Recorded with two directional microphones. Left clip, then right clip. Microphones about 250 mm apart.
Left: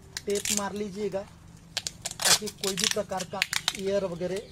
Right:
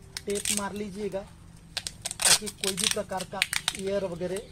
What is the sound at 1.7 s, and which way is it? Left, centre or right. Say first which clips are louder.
Tearing: even; centre.